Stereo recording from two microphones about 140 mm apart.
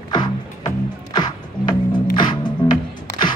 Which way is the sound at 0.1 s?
30° left (ahead or behind).